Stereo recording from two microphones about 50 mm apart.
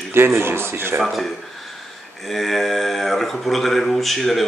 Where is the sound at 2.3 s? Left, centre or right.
Centre.